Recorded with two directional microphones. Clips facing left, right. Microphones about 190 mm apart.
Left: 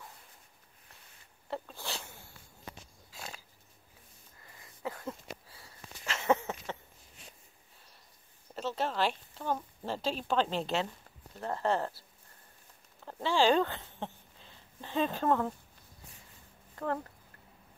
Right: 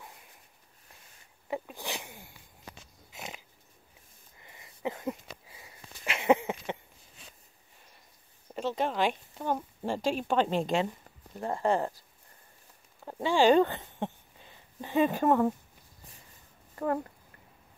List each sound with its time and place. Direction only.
1.5 s a sound: 15° right (ahead or behind)
3.1 s dog: 20° right (ahead or behind)
4.4 s sniff: 20° right (ahead or behind)
8.5 s speech: 15° right (ahead or behind)
13.0 s a sound: 10° right (ahead or behind)
16.7 s speech: 10° right (ahead or behind)